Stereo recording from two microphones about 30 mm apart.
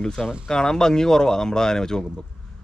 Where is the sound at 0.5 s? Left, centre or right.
Left.